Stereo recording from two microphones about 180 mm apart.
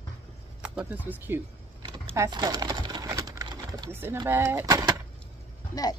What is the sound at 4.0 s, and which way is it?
Speech, 15° right (ahead or behind).